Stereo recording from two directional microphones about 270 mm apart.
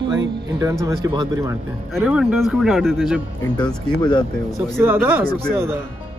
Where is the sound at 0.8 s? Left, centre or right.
Centre.